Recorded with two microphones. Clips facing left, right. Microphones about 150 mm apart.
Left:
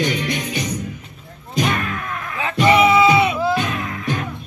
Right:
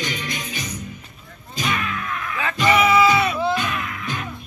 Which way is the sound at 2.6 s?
25° left (ahead or behind).